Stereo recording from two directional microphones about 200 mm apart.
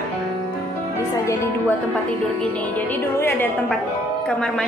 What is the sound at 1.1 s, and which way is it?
Speech, 15° left (ahead or behind).